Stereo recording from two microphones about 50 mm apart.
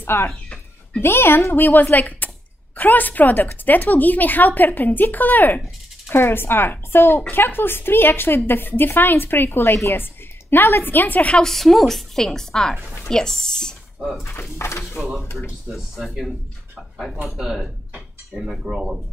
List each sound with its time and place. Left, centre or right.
0.0 s a woman's voice: left
6.0 s speech: left
11.3 s a woman's voice: centre
14.6 s speech: left
15.0 s speech: centre